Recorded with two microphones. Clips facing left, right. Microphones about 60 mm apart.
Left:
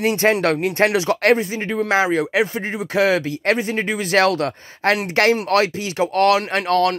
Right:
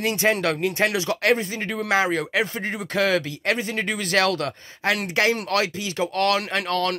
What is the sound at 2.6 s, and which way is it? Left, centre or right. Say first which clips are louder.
Speech: left 3 dB; centre.